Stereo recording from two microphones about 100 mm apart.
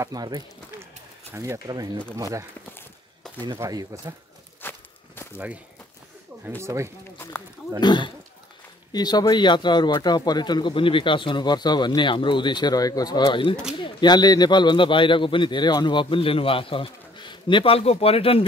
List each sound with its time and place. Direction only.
0.1 s speech: 40° right (ahead or behind)
1.3 s speech: 30° right (ahead or behind)
3.5 s speech: 30° right (ahead or behind)
4.6 s walk: 20° left (ahead or behind)
6.6 s speech: 30° right (ahead or behind)
7.8 s speech: 50° left (ahead or behind); by 18.4 s 75° left (ahead or behind)